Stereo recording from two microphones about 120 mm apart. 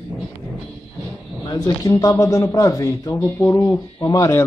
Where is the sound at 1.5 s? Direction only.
30° left (ahead or behind).